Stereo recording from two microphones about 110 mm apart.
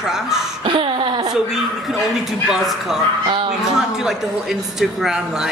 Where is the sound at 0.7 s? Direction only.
50° right (ahead or behind).